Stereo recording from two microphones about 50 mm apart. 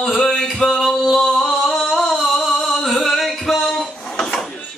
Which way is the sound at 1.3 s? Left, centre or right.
Centre.